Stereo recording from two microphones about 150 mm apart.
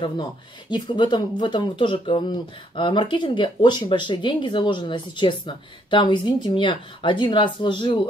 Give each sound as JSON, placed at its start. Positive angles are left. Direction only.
{"t": 0.0, "sound": "speech", "side_deg": 35}